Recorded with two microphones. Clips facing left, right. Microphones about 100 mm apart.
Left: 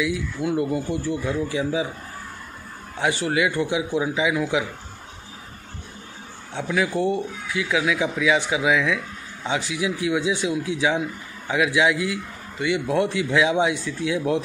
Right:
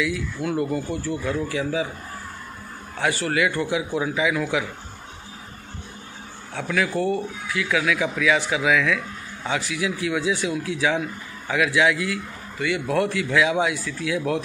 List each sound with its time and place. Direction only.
0.0 s speech: 20° left (ahead or behind)
3.0 s speech: 20° left (ahead or behind)
6.5 s speech: 20° left (ahead or behind)